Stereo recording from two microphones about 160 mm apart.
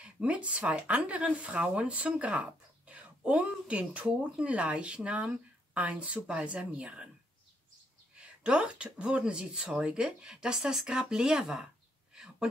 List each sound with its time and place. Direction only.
0.0 s speech: 10° right (ahead or behind)
8.2 s speech: 5° right (ahead or behind)
12.1 s a sound: 5° right (ahead or behind)